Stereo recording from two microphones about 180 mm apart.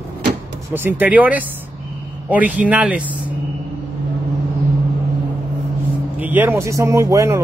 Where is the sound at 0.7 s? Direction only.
10° right (ahead or behind).